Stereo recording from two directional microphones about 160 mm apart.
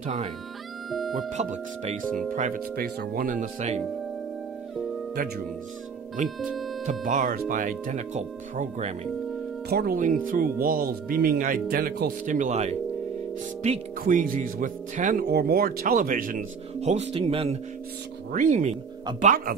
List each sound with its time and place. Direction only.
0.0 s speech: 45° right (ahead or behind)
0.8 s speech: centre (ahead or behind)
1.3 s speech: 45° right (ahead or behind)
2.7 s speech: 70° right (ahead or behind); by 3.8 s 45° right (ahead or behind)
6.2 s speech: centre (ahead or behind)
6.9 s speech: 50° right (ahead or behind)
9.7 s speech: 75° right (ahead or behind); by 12.7 s 45° right (ahead or behind)
14.0 s speech: 60° right (ahead or behind)
15.2 s speech: 80° right; by 17.6 s 35° right (ahead or behind)
18.3 s speech: 50° right (ahead or behind)
19.2 s speech: 60° right (ahead or behind)